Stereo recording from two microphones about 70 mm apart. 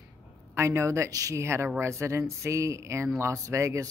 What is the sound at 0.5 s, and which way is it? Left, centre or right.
Speech, right.